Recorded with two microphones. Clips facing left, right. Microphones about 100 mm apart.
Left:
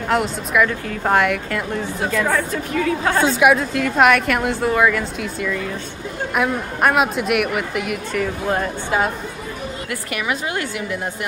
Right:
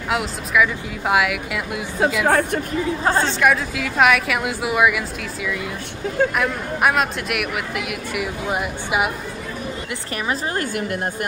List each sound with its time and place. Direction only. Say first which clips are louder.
0.1 s a woman's voice: left 2 dB; centre (ahead or behind)
2.2 s a woman's voice: right 3 dB; 60° right (ahead or behind)
2.7 s a woman's voice: left 4 dB; 25° right (ahead or behind)
3.2 s a woman's voice: left 5 dB; 5° left (ahead or behind); by 9.1 s 15° right (ahead or behind)
10.1 s a woman's voice: even; 35° right (ahead or behind)